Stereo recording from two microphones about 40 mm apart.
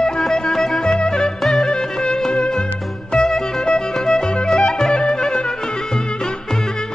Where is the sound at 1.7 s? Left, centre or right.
Left.